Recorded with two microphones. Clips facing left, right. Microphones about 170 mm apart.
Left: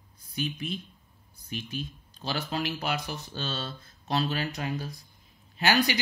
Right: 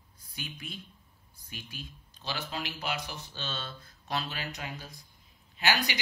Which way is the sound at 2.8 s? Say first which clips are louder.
Left 4 dB; 50° left (ahead or behind).